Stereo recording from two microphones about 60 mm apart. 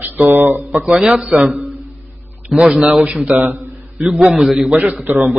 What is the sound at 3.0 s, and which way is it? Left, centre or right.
Speech, centre.